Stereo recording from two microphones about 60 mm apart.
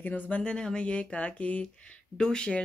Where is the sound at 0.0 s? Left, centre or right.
Left.